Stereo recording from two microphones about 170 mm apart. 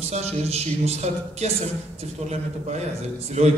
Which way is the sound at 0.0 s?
40° right (ahead or behind).